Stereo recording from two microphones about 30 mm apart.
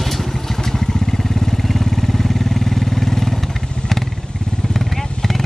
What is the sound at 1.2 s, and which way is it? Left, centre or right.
Vehicle, centre.